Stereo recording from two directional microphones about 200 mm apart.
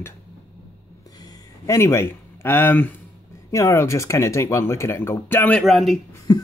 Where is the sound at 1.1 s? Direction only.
20° left (ahead or behind).